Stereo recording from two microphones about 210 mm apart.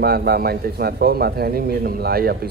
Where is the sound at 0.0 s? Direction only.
50° right (ahead or behind).